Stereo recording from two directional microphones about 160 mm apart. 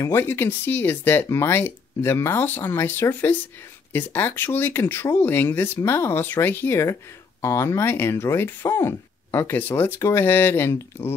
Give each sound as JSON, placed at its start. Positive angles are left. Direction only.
{"t": 0.0, "sound": "speech", "side_deg": 15}